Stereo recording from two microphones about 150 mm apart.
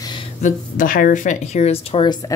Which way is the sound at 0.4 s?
60° left (ahead or behind).